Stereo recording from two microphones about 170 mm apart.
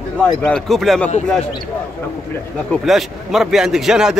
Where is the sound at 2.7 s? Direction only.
Centre (ahead or behind).